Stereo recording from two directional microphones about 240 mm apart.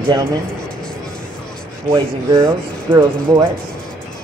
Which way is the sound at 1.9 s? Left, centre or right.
Centre.